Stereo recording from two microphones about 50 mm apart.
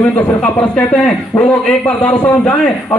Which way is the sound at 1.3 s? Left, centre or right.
Left.